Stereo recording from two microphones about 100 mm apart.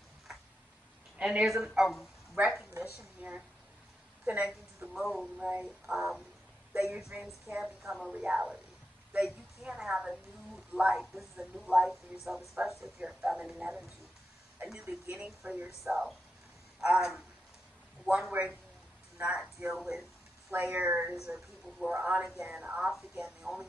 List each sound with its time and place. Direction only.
1.1 s speech: 10° right (ahead or behind)
2.6 s a woman's voice: 10° right (ahead or behind)
4.9 s speech: centre (ahead or behind)
9.1 s a sound: 5° right (ahead or behind)
10.7 s a woman's voice: 10° right (ahead or behind)
11.0 s speech: centre (ahead or behind)
19.7 s a sound: 5° right (ahead or behind)
20.5 s speech: 20° right (ahead or behind)
20.8 s speech: 10° right (ahead or behind)